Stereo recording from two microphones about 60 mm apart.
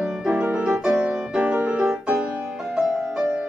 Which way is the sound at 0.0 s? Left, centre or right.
Centre.